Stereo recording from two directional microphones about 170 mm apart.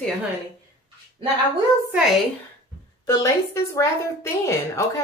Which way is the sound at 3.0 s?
15° left (ahead or behind).